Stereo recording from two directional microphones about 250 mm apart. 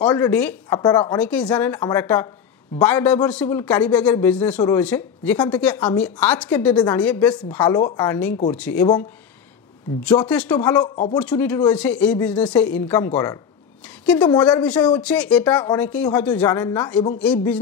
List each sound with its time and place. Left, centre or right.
0.1 s a man's voice: centre
0.7 s a man's voice: centre
1.1 s a man's voice: centre
6.7 s a man's voice: centre
7.0 s a man's voice: centre
10.2 s a man's voice: centre